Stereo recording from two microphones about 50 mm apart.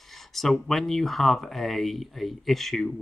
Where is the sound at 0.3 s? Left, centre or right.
Centre.